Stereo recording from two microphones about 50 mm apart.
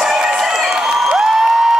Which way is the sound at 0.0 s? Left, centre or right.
Centre.